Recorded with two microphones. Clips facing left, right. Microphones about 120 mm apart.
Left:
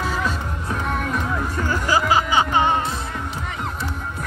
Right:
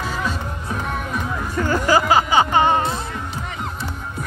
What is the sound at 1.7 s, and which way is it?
Music, 55° right (ahead or behind).